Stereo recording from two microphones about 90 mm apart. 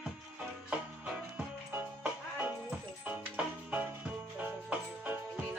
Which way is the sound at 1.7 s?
20° right (ahead or behind).